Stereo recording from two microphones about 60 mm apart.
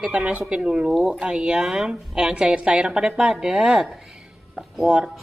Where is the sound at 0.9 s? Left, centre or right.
Centre.